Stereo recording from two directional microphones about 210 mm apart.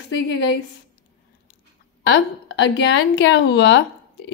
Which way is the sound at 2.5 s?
60° left (ahead or behind).